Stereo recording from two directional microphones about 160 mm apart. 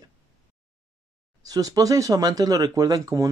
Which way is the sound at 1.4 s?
25° right (ahead or behind).